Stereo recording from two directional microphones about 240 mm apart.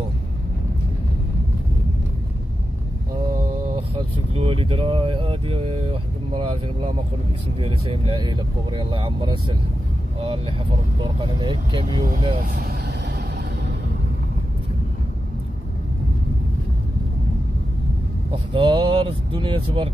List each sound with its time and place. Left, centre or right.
4.4 s speech: right
12.5 s speech: right
18.3 s speech: right